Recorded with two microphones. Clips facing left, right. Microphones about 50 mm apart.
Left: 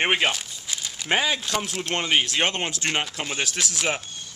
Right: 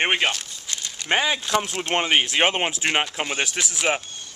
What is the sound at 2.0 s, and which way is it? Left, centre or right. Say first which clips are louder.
Speech: right 2 dB; centre.